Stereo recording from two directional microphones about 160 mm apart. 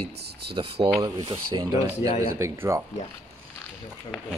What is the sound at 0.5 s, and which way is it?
Speech, 35° right (ahead or behind).